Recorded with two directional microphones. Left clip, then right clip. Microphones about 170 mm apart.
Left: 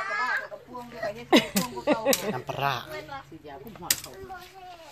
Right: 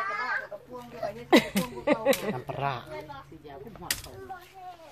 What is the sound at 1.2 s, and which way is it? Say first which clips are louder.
Speech: even; 10° left (ahead or behind).